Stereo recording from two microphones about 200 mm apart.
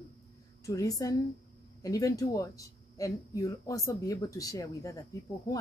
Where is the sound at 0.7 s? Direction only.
15° left (ahead or behind).